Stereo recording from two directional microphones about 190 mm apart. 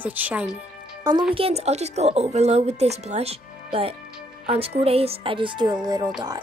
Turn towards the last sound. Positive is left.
turn(degrees=-20)  # may be behind; listen again after turning